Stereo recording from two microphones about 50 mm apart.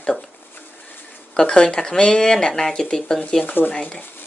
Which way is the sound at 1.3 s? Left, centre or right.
Centre.